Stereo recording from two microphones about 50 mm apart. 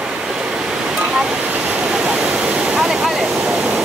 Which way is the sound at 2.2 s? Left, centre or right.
Centre.